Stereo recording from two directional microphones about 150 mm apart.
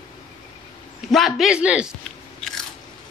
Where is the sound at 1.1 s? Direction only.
Centre (ahead or behind).